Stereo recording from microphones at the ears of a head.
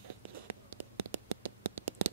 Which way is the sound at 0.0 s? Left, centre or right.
Right.